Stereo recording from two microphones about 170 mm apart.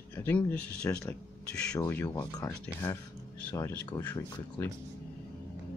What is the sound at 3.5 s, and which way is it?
Speech, 10° left (ahead or behind).